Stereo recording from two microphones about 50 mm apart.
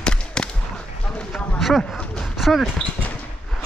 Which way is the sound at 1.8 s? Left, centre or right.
Centre.